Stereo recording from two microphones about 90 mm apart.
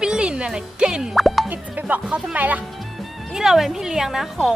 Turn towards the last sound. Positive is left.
turn(degrees=-5)  # may be behind; listen again after turning